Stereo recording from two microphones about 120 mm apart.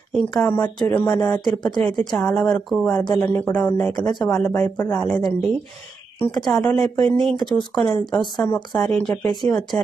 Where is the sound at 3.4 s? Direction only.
10° left (ahead or behind).